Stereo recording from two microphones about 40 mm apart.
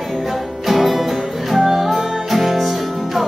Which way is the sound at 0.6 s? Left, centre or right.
Centre.